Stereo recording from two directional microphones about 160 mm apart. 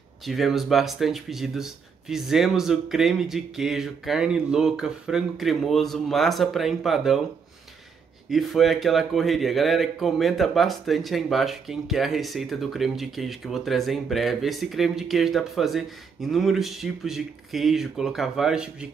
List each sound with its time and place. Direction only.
0.2 s a man's voice: centre (ahead or behind)
8.3 s a man's voice: centre (ahead or behind)